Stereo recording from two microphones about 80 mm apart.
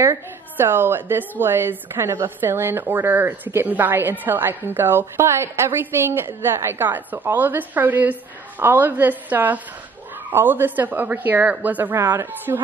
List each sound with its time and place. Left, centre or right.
0.6 s a woman's voice: right